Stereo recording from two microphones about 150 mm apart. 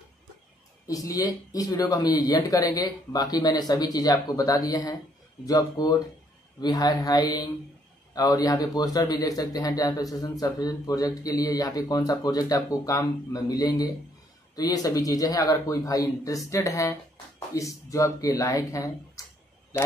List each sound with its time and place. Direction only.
0.8 s a man's voice: 25° left (ahead or behind)